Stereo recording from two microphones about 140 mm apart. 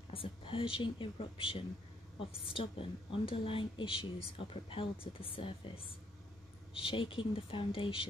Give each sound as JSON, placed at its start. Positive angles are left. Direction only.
{"t": 0.1, "sound": "a woman's voice", "side_deg": 40}
{"t": 6.7, "sound": "a woman's voice", "side_deg": 40}